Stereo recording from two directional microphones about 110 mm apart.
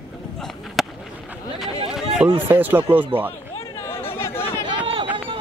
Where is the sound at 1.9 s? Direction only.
10° right (ahead or behind).